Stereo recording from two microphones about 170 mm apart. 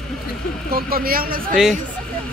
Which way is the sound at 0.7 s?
60° right (ahead or behind).